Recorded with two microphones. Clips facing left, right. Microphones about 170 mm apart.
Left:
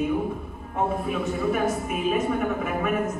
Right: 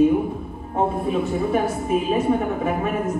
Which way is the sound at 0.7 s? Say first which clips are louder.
Right 4 dB; 30° right (ahead or behind).